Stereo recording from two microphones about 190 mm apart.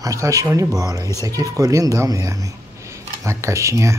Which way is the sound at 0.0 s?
15° right (ahead or behind).